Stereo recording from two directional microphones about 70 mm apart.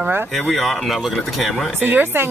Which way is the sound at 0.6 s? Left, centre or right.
Centre.